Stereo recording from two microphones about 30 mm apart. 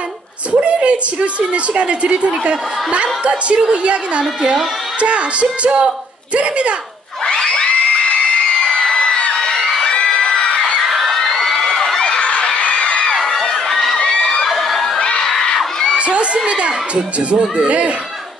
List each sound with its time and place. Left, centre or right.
0.5 s a woman's voice: right
7.2 s crowd: left
8.9 s a sound: left
9.8 s crowd: left
10.2 s a sound: left
10.9 s a sound: centre
11.3 s crowd: centre
12.0 s a sound: left
13.4 s crowd: centre
13.9 s crowd: left
14.4 s crowd: centre
15.0 s crowd: left
16.0 s crowd: right
16.4 s speech: right